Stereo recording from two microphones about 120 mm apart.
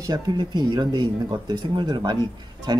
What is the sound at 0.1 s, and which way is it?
Speech, 35° right (ahead or behind).